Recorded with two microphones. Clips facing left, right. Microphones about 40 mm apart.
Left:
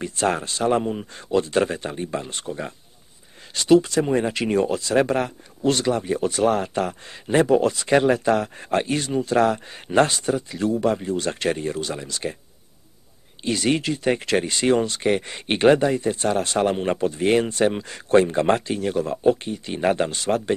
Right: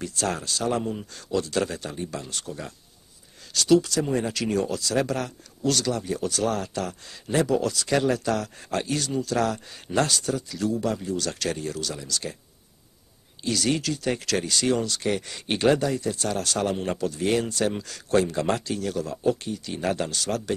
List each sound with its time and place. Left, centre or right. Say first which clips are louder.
0.0 s speech: left 5 dB; left
13.4 s speech: left 3 dB; left